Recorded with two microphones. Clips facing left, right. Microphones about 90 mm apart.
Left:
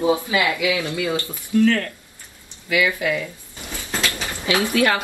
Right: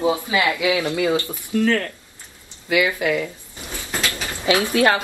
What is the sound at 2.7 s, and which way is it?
Speech, 25° right (ahead or behind).